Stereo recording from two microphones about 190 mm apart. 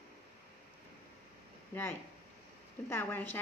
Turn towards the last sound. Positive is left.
turn(degrees=10)  # may be behind; listen again after turning